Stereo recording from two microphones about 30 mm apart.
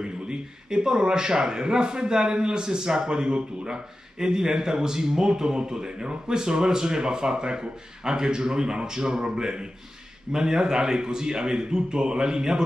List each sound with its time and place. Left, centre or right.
0.0 s a man's voice: right